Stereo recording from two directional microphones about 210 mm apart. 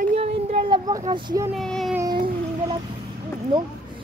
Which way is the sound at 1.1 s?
15° right (ahead or behind).